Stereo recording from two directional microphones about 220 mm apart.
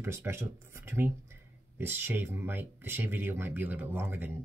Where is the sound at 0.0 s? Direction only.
10° right (ahead or behind).